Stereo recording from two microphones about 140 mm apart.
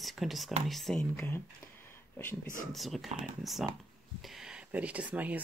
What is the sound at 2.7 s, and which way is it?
Speech, centre (ahead or behind).